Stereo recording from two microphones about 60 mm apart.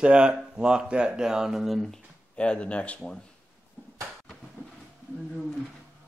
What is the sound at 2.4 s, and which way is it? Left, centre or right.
Speech, centre.